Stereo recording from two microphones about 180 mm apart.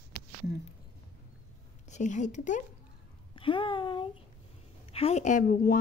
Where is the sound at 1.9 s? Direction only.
45° left (ahead or behind).